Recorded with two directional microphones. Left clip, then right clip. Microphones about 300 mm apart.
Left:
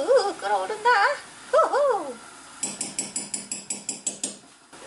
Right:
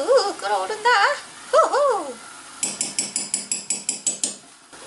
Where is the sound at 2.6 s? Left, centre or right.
Centre.